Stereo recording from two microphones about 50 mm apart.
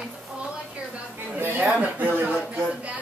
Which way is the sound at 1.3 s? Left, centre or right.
Right.